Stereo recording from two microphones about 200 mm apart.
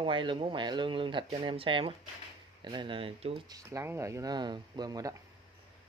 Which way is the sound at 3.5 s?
15° right (ahead or behind).